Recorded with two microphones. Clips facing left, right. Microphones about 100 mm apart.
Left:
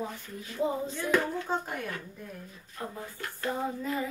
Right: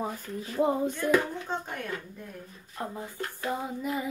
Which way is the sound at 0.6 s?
55° right (ahead or behind).